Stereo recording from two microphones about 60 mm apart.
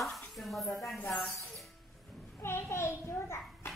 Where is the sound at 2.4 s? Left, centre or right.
Left.